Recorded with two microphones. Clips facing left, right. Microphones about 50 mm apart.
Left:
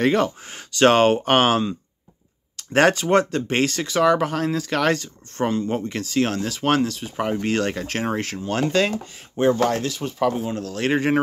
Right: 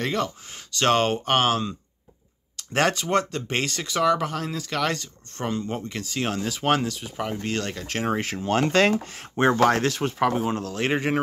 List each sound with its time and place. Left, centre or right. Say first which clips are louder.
0.0 s speech: left 7 dB; left; by 7.1 s centre
7.3 s speech: left 6 dB; centre
8.2 s speech: left 1 dB; centre
8.5 s speech: right 1 dB; right
10.8 s speech: left 4 dB; centre